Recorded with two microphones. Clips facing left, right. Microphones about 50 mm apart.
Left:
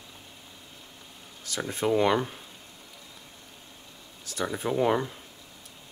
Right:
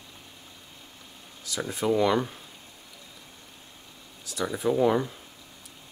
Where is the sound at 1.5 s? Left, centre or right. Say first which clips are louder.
Right 1 dB; left.